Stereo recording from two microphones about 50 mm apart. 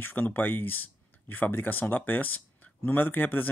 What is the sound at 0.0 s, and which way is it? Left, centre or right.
Speech, left.